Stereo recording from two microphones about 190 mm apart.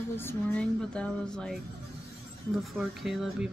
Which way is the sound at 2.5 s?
Centre (ahead or behind).